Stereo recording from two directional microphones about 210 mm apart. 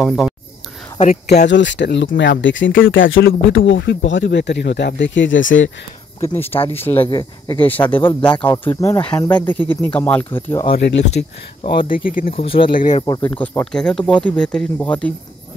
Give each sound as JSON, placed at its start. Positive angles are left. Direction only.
{"t": 0.0, "sound": "speech", "side_deg": 0}
{"t": 1.5, "sound": "speech", "side_deg": 60}
{"t": 6.7, "sound": "speech", "side_deg": 10}
{"t": 7.1, "sound": "speech", "side_deg": 20}
{"t": 7.9, "sound": "speech", "side_deg": 10}
{"t": 10.7, "sound": "speech", "side_deg": 55}
{"t": 11.6, "sound": "speech", "side_deg": 25}
{"t": 11.9, "sound": "speech", "side_deg": 40}
{"t": 13.0, "sound": "speech", "side_deg": 20}
{"t": 13.3, "sound": "speech", "side_deg": 5}